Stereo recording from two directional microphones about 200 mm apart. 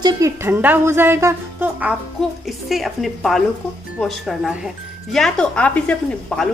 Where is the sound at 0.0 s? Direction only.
15° right (ahead or behind).